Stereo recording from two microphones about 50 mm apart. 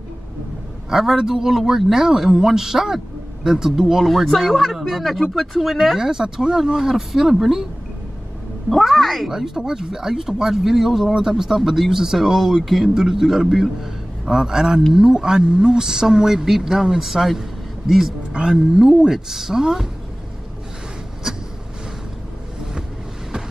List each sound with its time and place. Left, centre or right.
0.8 s speech: centre
5.9 s speech: centre
8.6 s speech: centre
9.3 s a man's voice: centre
18.3 s speech: centre